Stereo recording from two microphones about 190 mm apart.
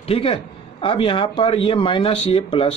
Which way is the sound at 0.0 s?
30° left (ahead or behind).